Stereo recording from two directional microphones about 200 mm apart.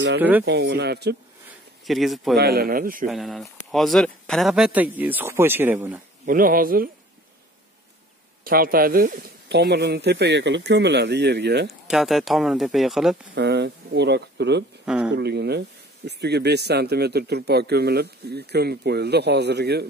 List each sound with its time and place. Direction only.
0.2 s speech: 10° right (ahead or behind)
0.5 s speech: 55° right (ahead or behind)
1.9 s speech: centre (ahead or behind)
2.3 s speech: 50° right (ahead or behind)
3.1 s speech: centre (ahead or behind)
6.2 s speech: 45° right (ahead or behind)
8.5 s speech: 45° right (ahead or behind)
11.9 s speech: centre (ahead or behind)
13.3 s speech: 60° right (ahead or behind)
14.9 s speech: 5° right (ahead or behind)
15.1 s speech: 55° right (ahead or behind)